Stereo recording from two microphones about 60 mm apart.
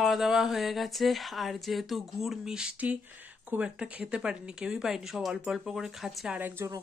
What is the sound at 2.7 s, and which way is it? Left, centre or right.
Speech, right.